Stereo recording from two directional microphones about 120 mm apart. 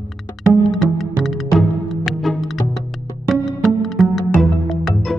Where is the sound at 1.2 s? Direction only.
Centre (ahead or behind).